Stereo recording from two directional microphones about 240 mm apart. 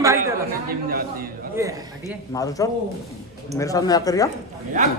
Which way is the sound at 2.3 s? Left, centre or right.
Centre.